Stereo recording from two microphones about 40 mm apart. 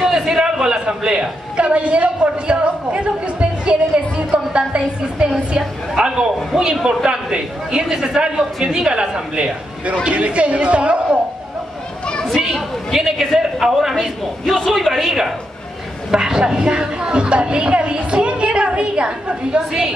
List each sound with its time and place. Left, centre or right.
0.0 s a sound: centre
0.3 s a woman's voice: centre
12.4 s a sound: centre
12.9 s a man's voice: centre
14.4 s a man's voice: centre
14.8 s a woman's voice: centre
16.1 s a woman's voice: centre